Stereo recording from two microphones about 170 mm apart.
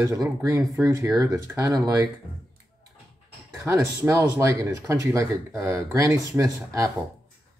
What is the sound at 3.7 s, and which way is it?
Speech, 20° right (ahead or behind).